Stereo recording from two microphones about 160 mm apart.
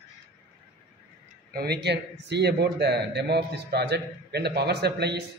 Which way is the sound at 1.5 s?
80° right.